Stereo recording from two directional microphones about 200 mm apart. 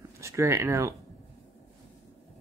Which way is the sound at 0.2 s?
15° right (ahead or behind).